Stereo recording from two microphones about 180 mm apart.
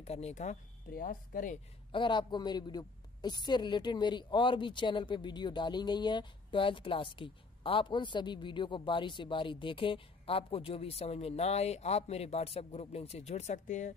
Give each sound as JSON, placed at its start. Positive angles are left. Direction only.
{"t": 0.0, "sound": "speech", "side_deg": 35}
{"t": 1.9, "sound": "a woman's voice", "side_deg": 25}